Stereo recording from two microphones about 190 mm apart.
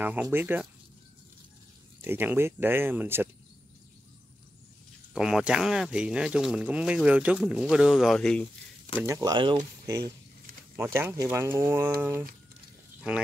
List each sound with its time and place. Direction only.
0.0 s speech: 10° right (ahead or behind)
2.0 s speech: 10° right (ahead or behind)
5.1 s speech: 5° right (ahead or behind)
9.0 s speech: 20° right (ahead or behind)
10.8 s speech: 10° right (ahead or behind)
13.0 s speech: 5° right (ahead or behind)